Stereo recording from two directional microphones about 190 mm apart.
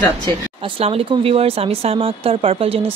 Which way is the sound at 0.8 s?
30° right (ahead or behind).